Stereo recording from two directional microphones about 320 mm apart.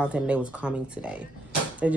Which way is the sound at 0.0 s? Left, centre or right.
Centre.